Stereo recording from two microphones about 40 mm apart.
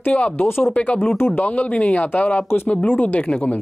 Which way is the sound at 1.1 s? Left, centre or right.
Left.